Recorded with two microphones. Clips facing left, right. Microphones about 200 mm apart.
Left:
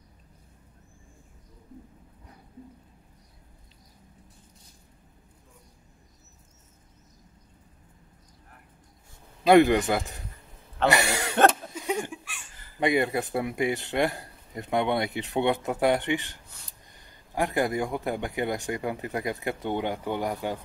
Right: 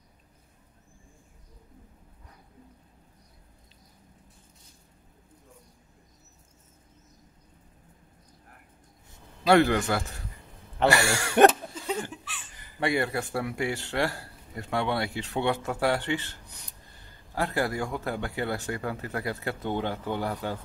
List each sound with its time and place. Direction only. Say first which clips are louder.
9.5 s a man's voice: left 3 dB; 15° left (ahead or behind)
10.9 s throat clearing: even; 20° left (ahead or behind)
11.7 s chuckle: left 2 dB; 15° left (ahead or behind)
12.7 s a man's voice: left 3 dB; 20° left (ahead or behind)